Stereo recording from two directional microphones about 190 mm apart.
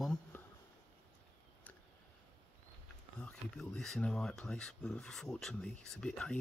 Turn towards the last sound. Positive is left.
turn(degrees=5)  # may be behind; listen again after turning